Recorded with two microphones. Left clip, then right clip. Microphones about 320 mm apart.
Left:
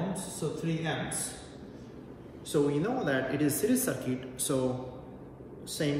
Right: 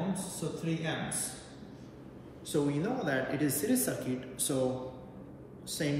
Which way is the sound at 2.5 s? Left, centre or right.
Centre.